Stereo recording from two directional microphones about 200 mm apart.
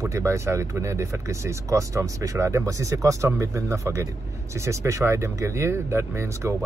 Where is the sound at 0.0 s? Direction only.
15° right (ahead or behind).